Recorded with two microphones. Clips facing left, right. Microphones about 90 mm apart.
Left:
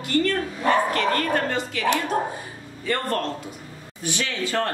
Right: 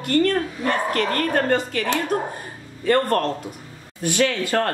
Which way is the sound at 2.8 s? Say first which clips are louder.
Right 6 dB; 50° right (ahead or behind).